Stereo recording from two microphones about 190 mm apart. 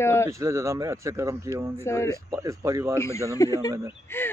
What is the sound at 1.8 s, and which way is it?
Speech, 15° left (ahead or behind).